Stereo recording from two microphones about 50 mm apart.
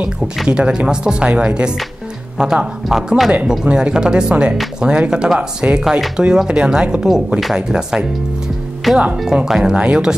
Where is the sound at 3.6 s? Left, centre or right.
Centre.